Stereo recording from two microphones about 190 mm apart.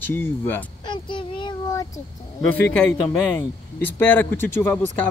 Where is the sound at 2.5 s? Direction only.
10° left (ahead or behind).